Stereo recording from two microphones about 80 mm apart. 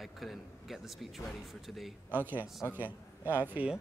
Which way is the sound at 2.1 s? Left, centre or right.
Right.